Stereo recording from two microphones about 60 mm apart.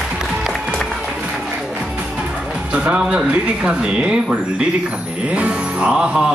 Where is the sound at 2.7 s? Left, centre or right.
Right.